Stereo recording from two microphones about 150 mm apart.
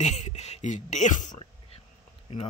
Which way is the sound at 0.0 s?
50° left (ahead or behind).